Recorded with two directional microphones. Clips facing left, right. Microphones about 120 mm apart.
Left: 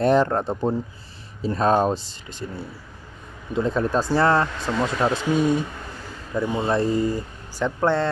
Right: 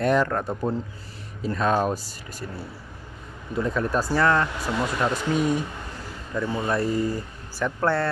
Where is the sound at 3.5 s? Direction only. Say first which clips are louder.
Left 3 dB; 25° left (ahead or behind).